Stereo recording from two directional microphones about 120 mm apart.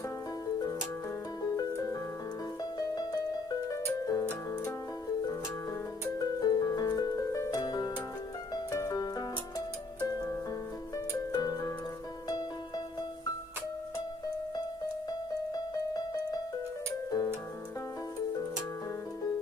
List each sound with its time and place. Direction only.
1.4 s music: 30° left (ahead or behind)
6.1 s harp: 35° left (ahead or behind)
8.7 s music: 30° left (ahead or behind)
11.3 s music: 35° left (ahead or behind)
15.5 s music: 30° left (ahead or behind)